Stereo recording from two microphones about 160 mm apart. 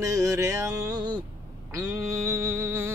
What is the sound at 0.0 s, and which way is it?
Music, 20° right (ahead or behind).